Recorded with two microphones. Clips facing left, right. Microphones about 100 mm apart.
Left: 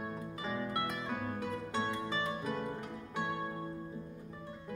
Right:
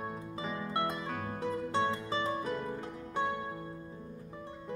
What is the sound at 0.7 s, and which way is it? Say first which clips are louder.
Music: right 2 dB; 25° right (ahead or behind).